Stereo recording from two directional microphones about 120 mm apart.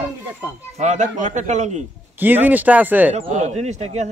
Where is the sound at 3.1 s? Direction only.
65° right (ahead or behind).